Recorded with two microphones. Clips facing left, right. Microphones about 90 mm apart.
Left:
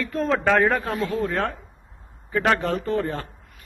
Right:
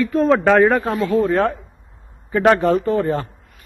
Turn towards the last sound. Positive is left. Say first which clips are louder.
# right 7 dB
turn(degrees=-15)  # may be behind; listen again after turning